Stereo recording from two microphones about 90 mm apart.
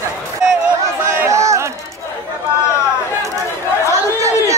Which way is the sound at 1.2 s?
35° right (ahead or behind).